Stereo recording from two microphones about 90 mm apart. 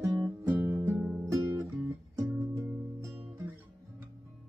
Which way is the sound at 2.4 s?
20° right (ahead or behind).